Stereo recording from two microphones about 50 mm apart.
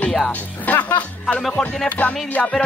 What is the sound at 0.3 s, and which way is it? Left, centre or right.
Speech, left.